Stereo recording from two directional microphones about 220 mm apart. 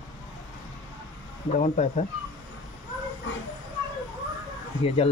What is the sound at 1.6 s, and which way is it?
Speech, 35° left (ahead or behind).